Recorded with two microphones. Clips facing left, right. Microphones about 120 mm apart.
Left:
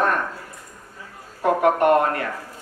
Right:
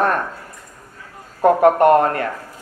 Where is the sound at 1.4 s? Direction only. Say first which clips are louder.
Right 5 dB; 40° right (ahead or behind).